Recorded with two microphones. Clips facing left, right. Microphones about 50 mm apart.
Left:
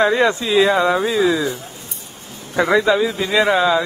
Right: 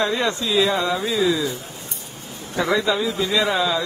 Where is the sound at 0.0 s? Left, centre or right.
Left.